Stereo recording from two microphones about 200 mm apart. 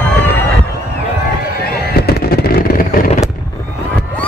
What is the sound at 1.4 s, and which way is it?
Fireworks, 50° left (ahead or behind).